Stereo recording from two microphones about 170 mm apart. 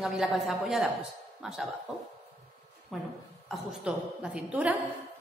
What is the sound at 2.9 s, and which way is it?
A woman's voice, centre (ahead or behind).